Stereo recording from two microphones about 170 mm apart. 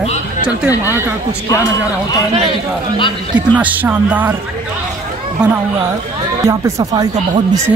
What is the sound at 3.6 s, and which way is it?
Speech, 10° right (ahead or behind).